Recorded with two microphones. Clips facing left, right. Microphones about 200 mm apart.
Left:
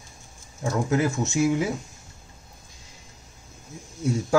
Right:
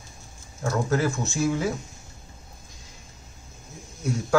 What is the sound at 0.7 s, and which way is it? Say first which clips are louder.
Speech: left 1 dB; 15° left (ahead or behind).